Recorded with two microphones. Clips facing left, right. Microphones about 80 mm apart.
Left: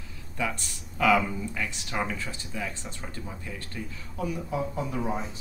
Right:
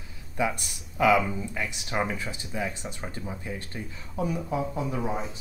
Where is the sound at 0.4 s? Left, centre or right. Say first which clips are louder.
Right 3 dB; centre.